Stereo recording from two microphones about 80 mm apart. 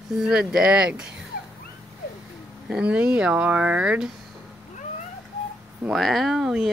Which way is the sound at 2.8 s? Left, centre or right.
Centre.